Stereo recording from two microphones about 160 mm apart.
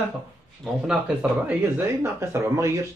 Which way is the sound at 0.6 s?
5° right (ahead or behind).